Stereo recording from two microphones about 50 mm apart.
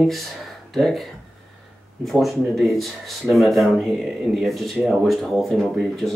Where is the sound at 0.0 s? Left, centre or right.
Centre.